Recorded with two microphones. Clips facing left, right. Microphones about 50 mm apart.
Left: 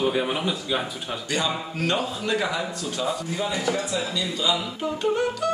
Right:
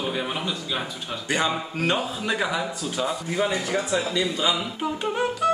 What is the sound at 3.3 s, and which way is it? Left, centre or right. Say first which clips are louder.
A man's voice: right 4 dB; right.